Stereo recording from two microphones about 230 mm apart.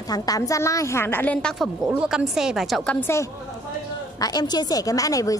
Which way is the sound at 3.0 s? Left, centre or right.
Centre.